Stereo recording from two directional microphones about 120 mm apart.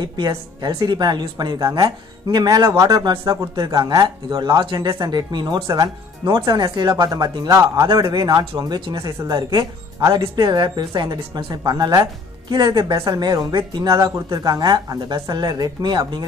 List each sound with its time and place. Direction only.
0.6 s speech: 35° right (ahead or behind)